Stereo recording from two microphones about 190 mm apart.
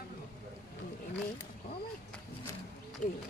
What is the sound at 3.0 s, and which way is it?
Speech, 5° left (ahead or behind).